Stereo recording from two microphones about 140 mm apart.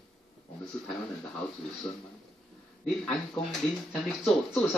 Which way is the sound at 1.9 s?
10° left (ahead or behind).